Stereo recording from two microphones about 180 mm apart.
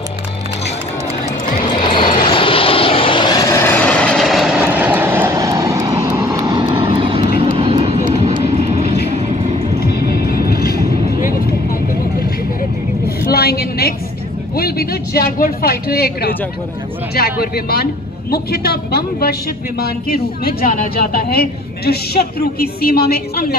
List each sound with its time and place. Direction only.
1.7 s vehicle: 25° left (ahead or behind); by 8.8 s 40° right (ahead or behind)
9.8 s vehicle: 60° left (ahead or behind)
13.3 s a sound: 60° left (ahead or behind)
17.1 s a woman's voice: 60° left (ahead or behind)